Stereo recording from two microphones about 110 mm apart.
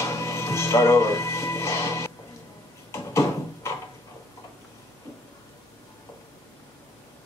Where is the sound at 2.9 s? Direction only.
25° left (ahead or behind).